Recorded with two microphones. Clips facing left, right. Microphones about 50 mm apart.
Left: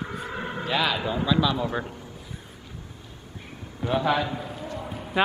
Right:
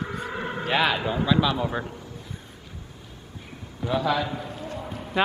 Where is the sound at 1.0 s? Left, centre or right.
Centre.